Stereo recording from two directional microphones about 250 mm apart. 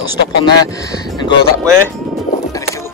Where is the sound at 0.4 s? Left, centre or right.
Centre.